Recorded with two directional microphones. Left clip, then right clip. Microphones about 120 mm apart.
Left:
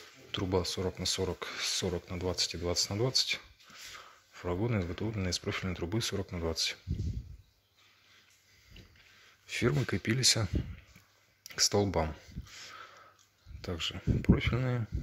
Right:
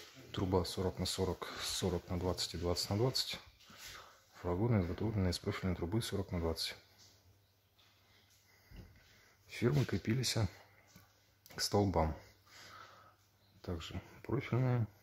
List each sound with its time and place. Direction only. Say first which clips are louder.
0.5 s speech: left 3 dB; 5° left (ahead or behind)
3.9 s a sound: left 5 dB; 10° left (ahead or behind)
4.6 s speech: left 2 dB; 5° left (ahead or behind)
9.5 s speech: left 5 dB; 15° left (ahead or behind)
11.4 s speech: left 6 dB; 5° left (ahead or behind)
13.6 s speech: left 9 dB; 10° left (ahead or behind)